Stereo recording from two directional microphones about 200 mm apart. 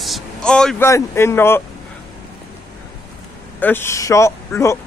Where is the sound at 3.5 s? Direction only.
10° left (ahead or behind).